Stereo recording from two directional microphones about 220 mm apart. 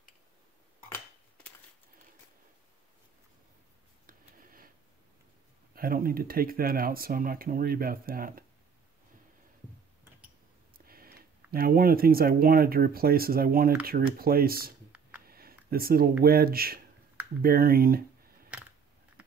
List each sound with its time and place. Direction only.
4.0 s a sound: 40° right (ahead or behind)
5.8 s speech: 40° right (ahead or behind)
10.9 s speech: 40° right (ahead or behind)